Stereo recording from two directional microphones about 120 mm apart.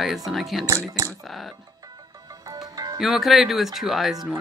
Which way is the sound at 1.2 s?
Centre (ahead or behind).